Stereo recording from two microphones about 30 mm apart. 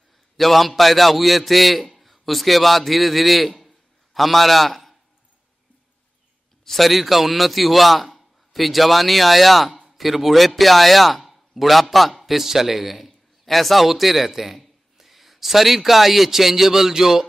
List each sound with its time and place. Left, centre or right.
0.4 s a man's voice: centre
6.6 s a man's voice: centre